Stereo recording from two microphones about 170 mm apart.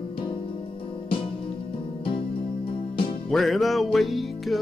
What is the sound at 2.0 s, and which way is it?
Music, 30° left (ahead or behind).